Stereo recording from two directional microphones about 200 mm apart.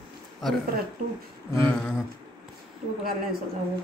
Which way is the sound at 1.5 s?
15° left (ahead or behind).